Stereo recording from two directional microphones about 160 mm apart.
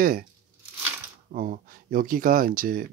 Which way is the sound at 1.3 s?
60° right (ahead or behind).